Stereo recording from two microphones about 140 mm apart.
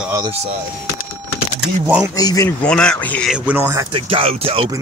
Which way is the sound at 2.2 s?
25° left (ahead or behind).